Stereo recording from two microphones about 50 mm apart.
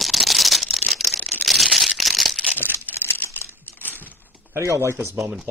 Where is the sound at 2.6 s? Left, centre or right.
Left.